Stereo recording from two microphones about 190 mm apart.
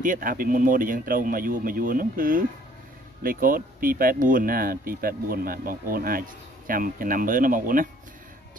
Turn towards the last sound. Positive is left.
turn(degrees=-45)  # may be behind; listen again after turning